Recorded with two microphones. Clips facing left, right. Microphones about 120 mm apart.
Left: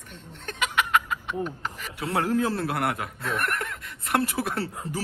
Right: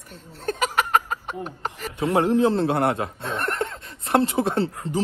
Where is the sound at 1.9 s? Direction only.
25° right (ahead or behind).